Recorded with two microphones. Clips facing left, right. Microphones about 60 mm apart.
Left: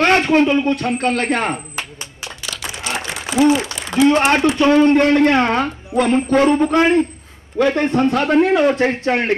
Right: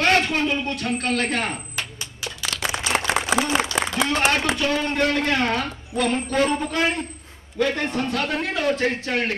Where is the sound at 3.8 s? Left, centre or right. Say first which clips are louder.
Right 6 dB; right.